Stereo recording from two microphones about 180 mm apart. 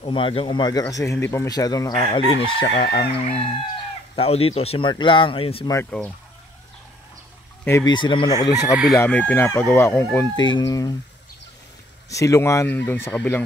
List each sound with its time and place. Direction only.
0.0 s speech: 30° left (ahead or behind)
2.8 s speech: 60° left (ahead or behind)
3.3 s speech: 30° left (ahead or behind)
5.9 s speech: 5° left (ahead or behind)
7.6 s speech: 15° left (ahead or behind)
7.9 s speech: 25° left (ahead or behind)
12.1 s speech: 15° left (ahead or behind)